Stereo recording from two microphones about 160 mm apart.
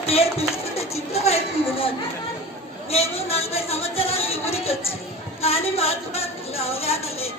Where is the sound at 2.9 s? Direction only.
40° left (ahead or behind).